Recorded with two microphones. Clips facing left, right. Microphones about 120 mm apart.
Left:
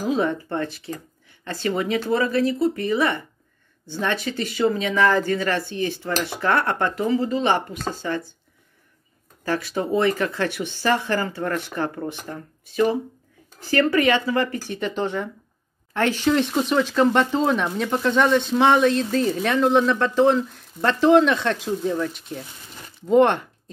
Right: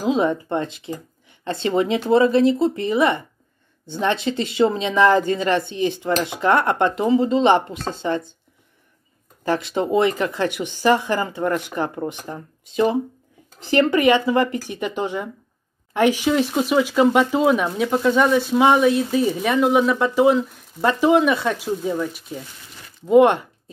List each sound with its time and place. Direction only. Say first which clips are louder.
0.1 s a woman's voice: right 4 dB; 15° right (ahead or behind)
9.4 s speech: right 3 dB; 20° right (ahead or behind)